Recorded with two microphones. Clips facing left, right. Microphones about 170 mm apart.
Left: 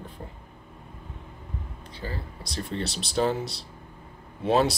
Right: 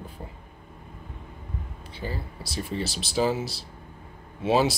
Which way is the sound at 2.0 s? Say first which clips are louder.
Right 2 dB; 20° right (ahead or behind).